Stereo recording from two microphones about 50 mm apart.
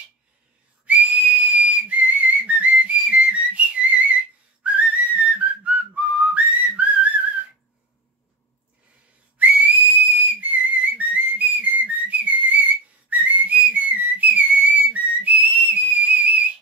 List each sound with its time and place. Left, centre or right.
0.8 s whistle: right
4.6 s whistling: right
9.4 s whistle: right